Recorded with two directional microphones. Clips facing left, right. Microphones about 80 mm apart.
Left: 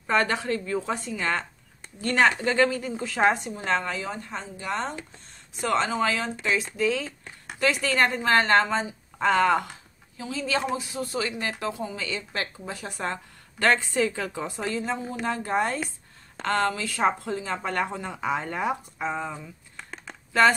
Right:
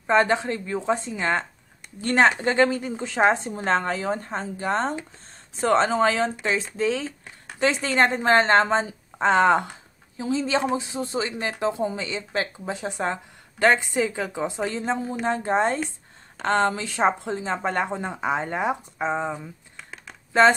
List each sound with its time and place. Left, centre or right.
0.0 s a woman's voice: right